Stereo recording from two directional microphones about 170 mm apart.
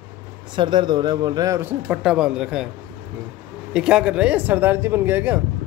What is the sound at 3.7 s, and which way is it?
Speech, 5° right (ahead or behind).